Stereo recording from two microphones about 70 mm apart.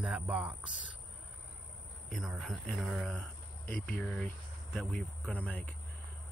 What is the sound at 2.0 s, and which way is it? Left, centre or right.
A man's voice, centre.